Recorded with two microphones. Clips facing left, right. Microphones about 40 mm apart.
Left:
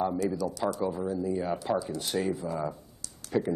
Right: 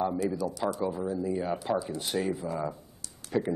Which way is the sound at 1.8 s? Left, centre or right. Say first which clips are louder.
Even; right.